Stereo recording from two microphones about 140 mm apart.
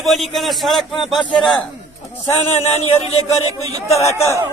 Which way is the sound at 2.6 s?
50° left (ahead or behind).